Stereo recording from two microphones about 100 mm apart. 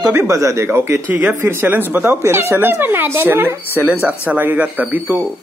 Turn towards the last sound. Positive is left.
turn(degrees=-15)  # may be behind; listen again after turning